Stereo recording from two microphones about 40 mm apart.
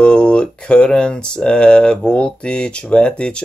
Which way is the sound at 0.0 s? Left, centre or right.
Left.